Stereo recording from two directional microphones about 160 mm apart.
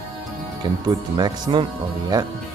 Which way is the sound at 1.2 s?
30° right (ahead or behind).